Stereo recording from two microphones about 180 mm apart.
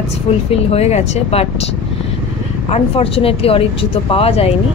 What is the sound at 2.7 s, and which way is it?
Speech, 30° left (ahead or behind).